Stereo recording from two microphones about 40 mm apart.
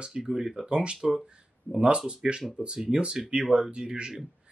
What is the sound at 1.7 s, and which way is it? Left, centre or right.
Speech, right.